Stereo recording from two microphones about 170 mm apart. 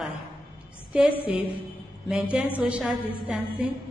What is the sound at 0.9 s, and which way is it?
Speech, 5° right (ahead or behind).